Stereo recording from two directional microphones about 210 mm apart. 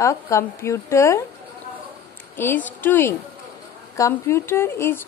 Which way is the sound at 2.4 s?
10° left (ahead or behind).